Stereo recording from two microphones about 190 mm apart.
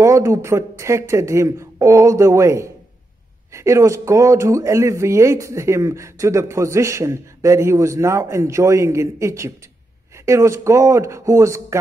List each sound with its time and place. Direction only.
0.0 s speech: 15° right (ahead or behind)